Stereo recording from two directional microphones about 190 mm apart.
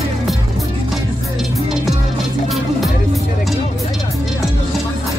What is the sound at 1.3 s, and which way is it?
Music, centre (ahead or behind).